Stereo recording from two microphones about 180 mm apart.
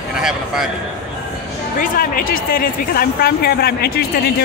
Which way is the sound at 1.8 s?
50° left (ahead or behind).